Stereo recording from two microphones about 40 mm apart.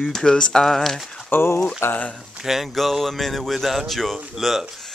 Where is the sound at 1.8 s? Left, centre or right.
Left.